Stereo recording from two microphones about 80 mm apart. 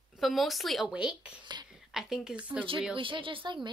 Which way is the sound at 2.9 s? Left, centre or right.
Right.